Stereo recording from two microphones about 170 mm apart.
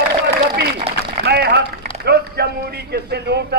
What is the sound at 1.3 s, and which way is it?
Speech, 75° right (ahead or behind).